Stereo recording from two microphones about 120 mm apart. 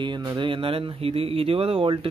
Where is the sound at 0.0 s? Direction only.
40° right (ahead or behind).